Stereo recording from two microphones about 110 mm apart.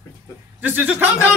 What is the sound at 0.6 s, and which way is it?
Speech, 15° right (ahead or behind).